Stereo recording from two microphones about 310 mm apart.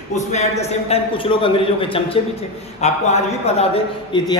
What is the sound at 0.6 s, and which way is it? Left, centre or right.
A man's voice, centre.